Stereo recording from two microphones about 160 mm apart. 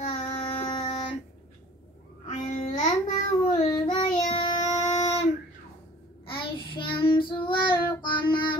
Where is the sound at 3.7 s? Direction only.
30° left (ahead or behind).